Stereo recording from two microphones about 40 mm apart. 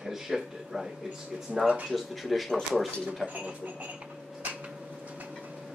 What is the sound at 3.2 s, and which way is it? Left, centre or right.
Speech, right.